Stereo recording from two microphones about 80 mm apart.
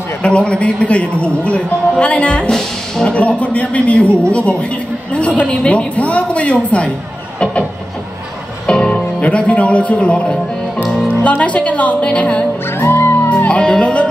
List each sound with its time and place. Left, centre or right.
0.2 s a man's voice: centre
8.6 s speech: centre
10.8 s music: centre
11.1 s a man's voice: centre
12.8 s music: left
13.3 s speech: centre